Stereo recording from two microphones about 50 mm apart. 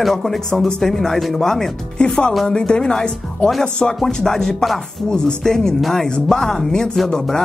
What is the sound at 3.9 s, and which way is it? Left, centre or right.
Speech, centre.